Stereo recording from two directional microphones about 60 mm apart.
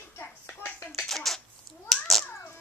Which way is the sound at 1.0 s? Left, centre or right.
Centre.